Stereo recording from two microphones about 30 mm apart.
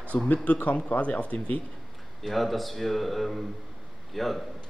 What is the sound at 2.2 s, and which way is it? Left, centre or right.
A man's voice, centre.